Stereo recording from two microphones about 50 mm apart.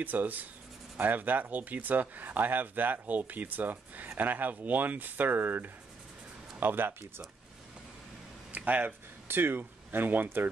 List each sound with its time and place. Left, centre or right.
0.0 s speech: right
8.5 s a sound: right
9.3 s speech: right